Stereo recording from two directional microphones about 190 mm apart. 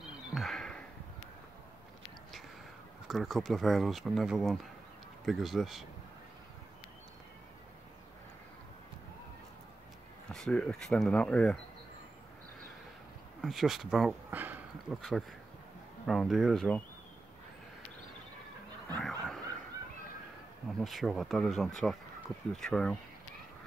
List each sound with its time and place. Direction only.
0.3 s a sound: centre (ahead or behind)
3.1 s speech: centre (ahead or behind)
10.3 s speech: 5° left (ahead or behind)
13.4 s speech: centre (ahead or behind)
18.9 s a sound: 5° left (ahead or behind)
20.8 s speech: centre (ahead or behind)